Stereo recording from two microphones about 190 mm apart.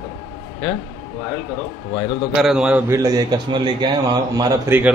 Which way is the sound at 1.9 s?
30° left (ahead or behind).